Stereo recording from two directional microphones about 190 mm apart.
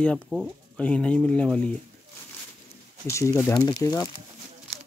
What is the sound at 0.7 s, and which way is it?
Speech, 5° left (ahead or behind).